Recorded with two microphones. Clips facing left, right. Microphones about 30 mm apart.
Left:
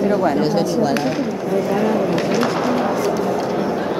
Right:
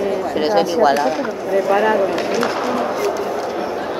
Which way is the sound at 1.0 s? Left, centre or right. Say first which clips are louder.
Right 2 dB; centre.